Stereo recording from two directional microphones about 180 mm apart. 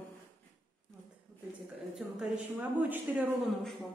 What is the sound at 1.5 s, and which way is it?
A woman's voice, 5° right (ahead or behind).